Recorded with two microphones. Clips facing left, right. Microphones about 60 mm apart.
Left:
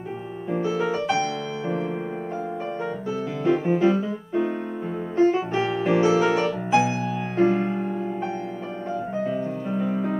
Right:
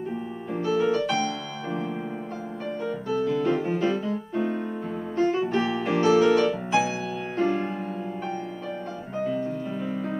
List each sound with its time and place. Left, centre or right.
0.5 s music: centre
2.8 s music: centre
5.5 s music: centre
9.2 s music: centre